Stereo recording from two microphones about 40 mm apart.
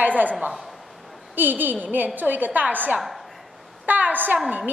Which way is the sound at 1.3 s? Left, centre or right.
Right.